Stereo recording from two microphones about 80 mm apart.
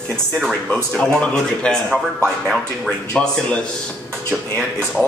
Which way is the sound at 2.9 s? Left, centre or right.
Centre.